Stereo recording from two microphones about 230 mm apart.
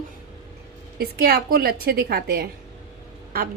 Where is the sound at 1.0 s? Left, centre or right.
Right.